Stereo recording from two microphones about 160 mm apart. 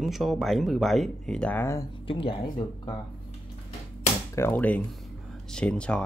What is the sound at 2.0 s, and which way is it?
Speech, 35° left (ahead or behind).